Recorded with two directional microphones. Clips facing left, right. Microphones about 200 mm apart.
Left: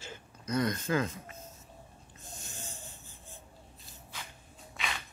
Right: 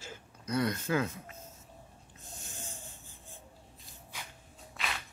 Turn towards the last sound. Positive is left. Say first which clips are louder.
# even
turn(degrees=0)  # may be behind; listen again after turning